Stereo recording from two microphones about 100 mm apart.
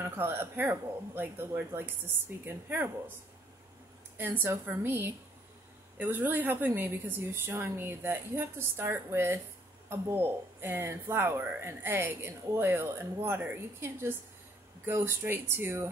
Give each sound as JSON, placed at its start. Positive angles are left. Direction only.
{"t": 0.0, "sound": "speech", "side_deg": -25}
{"t": 4.2, "sound": "speech", "side_deg": -20}